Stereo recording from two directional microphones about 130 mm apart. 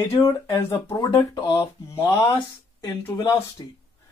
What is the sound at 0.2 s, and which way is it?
Speech, 25° left (ahead or behind).